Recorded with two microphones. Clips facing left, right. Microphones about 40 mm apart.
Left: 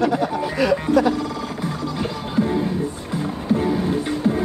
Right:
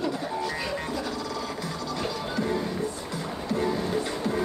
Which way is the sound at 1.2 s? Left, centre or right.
Left.